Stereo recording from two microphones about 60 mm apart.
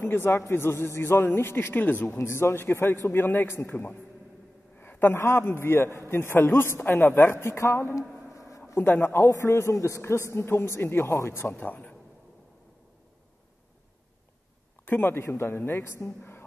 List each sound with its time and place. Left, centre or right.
0.1 s a man's voice: left
2.1 s a man's voice: left
4.7 s a sound: left
5.2 s a man's voice: left
8.3 s a sound: left
8.7 s a man's voice: left
9.2 s a man's voice: left
11.4 s speech: left
14.9 s a man's voice: left
15.8 s a man's voice: left
16.2 s a sound: left